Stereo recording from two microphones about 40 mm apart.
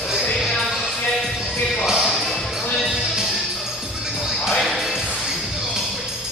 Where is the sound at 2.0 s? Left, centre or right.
Centre.